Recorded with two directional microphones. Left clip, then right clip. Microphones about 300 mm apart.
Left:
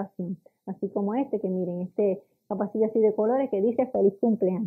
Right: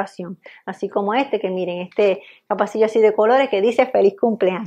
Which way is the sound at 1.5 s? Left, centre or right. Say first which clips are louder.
Right 7 dB; right.